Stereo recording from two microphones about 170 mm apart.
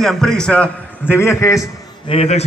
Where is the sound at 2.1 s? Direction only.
35° left (ahead or behind).